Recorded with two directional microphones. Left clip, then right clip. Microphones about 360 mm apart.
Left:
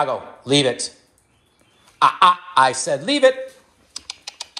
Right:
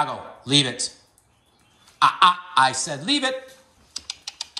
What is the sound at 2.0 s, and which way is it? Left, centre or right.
Speech, centre.